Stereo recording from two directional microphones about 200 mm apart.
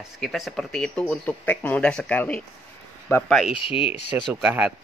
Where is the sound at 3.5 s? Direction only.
25° left (ahead or behind).